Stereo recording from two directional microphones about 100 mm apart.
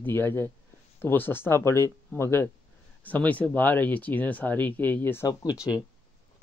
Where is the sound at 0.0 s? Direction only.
20° left (ahead or behind).